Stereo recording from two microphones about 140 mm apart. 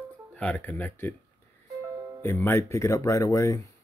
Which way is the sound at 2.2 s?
15° left (ahead or behind).